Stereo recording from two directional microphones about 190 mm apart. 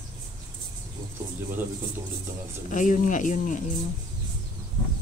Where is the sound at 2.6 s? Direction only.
40° left (ahead or behind).